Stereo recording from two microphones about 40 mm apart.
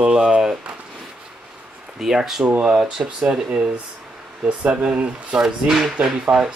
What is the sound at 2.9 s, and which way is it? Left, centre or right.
Speech, centre.